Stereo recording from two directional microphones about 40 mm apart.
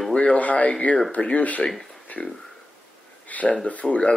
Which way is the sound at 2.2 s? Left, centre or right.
Centre.